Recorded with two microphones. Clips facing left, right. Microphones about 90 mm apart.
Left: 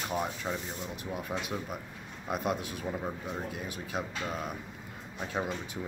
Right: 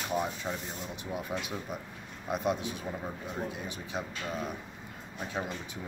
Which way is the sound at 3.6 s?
5° left (ahead or behind).